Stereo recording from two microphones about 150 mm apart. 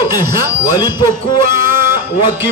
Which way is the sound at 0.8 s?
30° left (ahead or behind).